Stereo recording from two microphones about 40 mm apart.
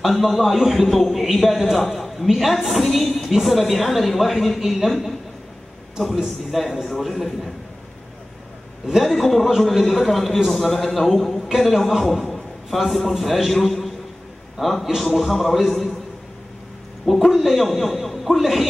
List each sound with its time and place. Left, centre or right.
0.1 s a man's voice: centre
9.0 s a man's voice: centre
17.0 s a man's voice: centre